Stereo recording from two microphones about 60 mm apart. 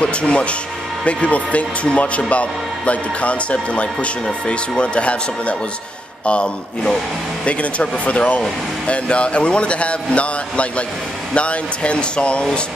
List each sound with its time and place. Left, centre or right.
0.0 s a man's voice: centre